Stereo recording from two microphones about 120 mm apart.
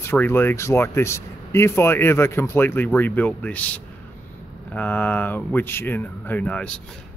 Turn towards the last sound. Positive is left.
turn(degrees=10)  # may be behind; listen again after turning